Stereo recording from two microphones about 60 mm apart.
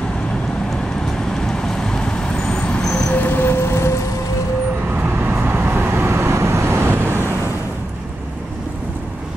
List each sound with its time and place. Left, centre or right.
1.3 s vehicle: centre
3.1 s vehicle: left
5.0 s vehicle: right